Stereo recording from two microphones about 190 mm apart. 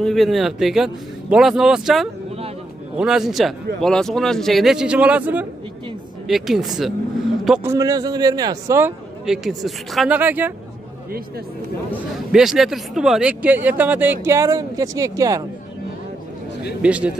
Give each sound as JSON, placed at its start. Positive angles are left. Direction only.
{"t": 0.0, "sound": "speech", "side_deg": 0}
{"t": 7.6, "sound": "a man's voice", "side_deg": -15}
{"t": 9.2, "sound": "speech", "side_deg": 0}
{"t": 12.3, "sound": "speech", "side_deg": 0}
{"t": 16.8, "sound": "speech", "side_deg": -5}